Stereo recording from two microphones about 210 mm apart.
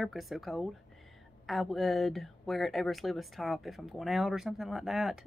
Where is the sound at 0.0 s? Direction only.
Centre (ahead or behind).